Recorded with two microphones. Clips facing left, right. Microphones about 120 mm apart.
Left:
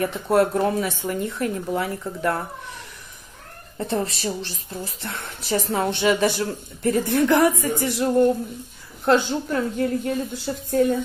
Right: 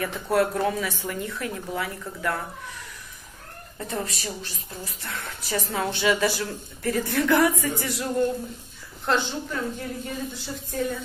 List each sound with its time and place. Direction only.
0.0 s speech: 30° left (ahead or behind)
3.7 s speech: 30° left (ahead or behind)
9.0 s a woman's voice: 45° left (ahead or behind)